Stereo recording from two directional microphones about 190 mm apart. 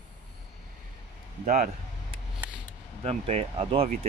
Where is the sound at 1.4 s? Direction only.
40° right (ahead or behind).